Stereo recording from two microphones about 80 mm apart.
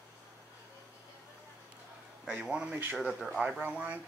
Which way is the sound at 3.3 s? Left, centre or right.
Centre.